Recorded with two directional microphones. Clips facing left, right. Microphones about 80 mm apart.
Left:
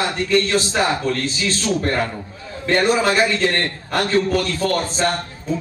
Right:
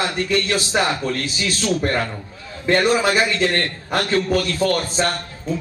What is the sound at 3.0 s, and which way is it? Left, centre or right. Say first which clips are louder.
Speech: left 1 dB; centre.